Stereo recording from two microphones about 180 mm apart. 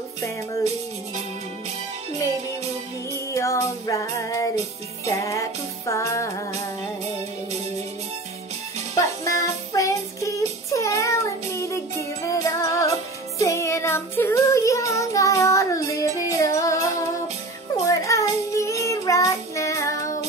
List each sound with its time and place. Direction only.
3.1 s music: 15° left (ahead or behind)
8.9 s music: 15° left (ahead or behind)
13.4 s child singing: 15° left (ahead or behind)